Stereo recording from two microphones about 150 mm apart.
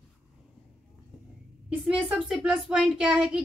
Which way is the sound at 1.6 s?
5° right (ahead or behind).